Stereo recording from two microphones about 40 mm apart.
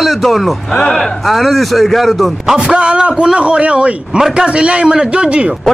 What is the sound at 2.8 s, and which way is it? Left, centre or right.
Speech, right.